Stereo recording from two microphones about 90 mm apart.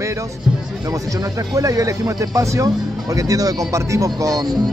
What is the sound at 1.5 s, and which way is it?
Speech, 40° right (ahead or behind).